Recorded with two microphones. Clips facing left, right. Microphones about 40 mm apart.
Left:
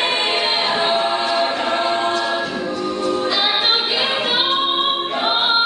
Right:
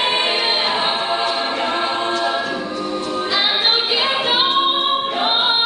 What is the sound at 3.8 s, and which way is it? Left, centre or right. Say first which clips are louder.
Music: right 1 dB; right.